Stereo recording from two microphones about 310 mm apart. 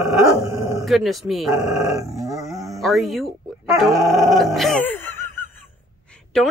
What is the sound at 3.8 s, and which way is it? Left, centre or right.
Music, centre.